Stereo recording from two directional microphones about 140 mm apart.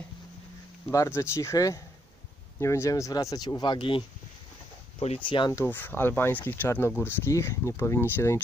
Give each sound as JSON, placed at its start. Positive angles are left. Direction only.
{"t": 0.8, "sound": "speech", "side_deg": 20}
{"t": 4.9, "sound": "speech", "side_deg": 50}
{"t": 5.5, "sound": "speech", "side_deg": 15}